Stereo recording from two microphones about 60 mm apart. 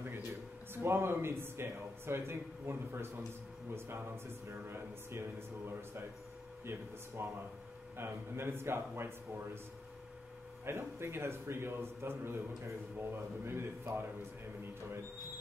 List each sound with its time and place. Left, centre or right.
0.8 s a man's voice: right
10.6 s a man's voice: right